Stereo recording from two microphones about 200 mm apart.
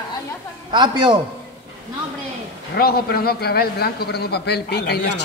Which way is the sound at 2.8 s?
50° left (ahead or behind).